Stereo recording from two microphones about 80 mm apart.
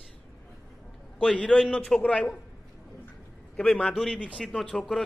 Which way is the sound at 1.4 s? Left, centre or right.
Centre.